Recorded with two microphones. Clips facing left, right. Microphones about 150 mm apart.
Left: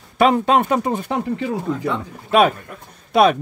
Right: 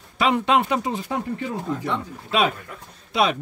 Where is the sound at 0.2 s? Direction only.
45° left (ahead or behind).